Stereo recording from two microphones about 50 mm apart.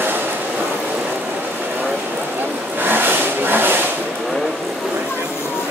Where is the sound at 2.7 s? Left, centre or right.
Right.